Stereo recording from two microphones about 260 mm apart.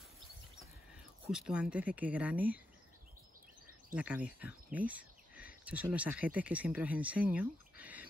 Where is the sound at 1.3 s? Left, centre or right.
Centre.